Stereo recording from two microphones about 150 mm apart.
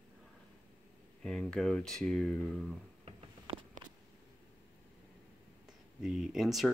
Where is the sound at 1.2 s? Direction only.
5° left (ahead or behind).